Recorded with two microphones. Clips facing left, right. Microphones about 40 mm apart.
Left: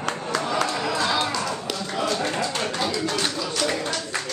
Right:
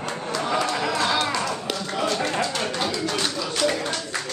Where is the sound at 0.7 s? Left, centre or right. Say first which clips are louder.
Right 1 dB; centre.